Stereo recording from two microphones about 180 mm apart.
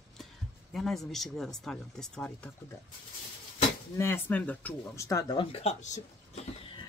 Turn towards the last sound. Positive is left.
turn(degrees=40)  # may be behind; listen again after turning